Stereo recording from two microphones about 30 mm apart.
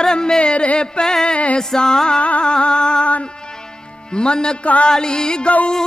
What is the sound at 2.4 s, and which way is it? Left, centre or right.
Music, left.